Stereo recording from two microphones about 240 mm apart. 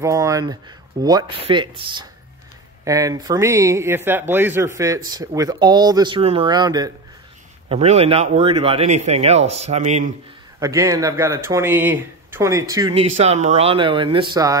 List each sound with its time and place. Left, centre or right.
0.0 s speech: centre; by 10.0 s right
10.6 s speech: centre
13.1 s speech: right